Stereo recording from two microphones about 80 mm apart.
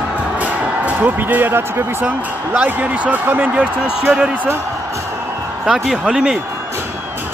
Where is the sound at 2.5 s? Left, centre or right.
Right.